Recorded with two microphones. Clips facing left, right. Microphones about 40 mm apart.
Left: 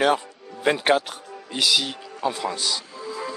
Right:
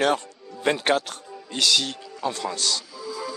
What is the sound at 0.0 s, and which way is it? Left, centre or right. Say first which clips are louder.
Speech: left 2 dB; centre.